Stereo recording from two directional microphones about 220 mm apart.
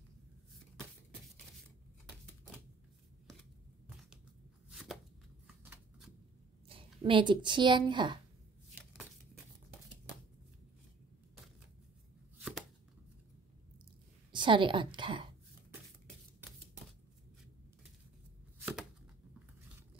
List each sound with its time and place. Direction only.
4.6 s chopping: centre (ahead or behind)
5.6 s shuffling cards: 5° right (ahead or behind)
6.7 s speech: 25° right (ahead or behind)
12.4 s chopping: 5° right (ahead or behind)
14.3 s a woman's voice: 20° right (ahead or behind)
18.6 s chopping: 5° right (ahead or behind)